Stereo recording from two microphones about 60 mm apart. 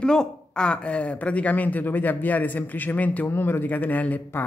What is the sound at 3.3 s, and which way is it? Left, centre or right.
A man's voice, left.